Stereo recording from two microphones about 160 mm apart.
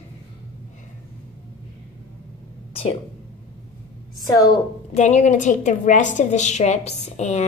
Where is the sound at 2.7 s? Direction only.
40° left (ahead or behind).